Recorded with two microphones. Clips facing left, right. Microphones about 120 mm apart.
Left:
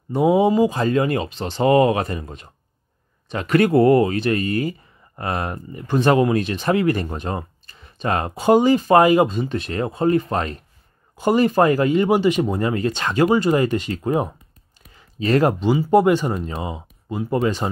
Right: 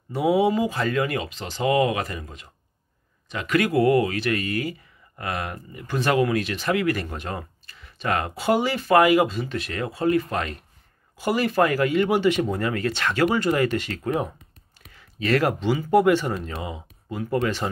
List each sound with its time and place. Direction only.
0.3 s speech: 25° left (ahead or behind)
16.1 s speech: 15° left (ahead or behind)